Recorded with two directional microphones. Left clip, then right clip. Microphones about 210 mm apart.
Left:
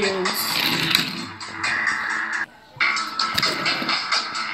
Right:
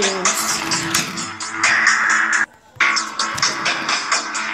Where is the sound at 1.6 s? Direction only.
40° right (ahead or behind).